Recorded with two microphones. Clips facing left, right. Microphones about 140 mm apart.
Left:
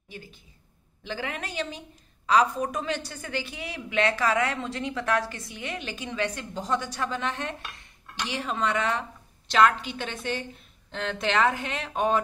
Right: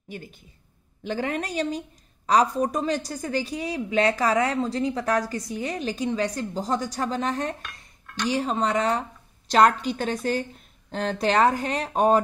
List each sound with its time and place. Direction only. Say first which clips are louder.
1.0 s a woman's voice: right 6 dB; 35° right (ahead or behind)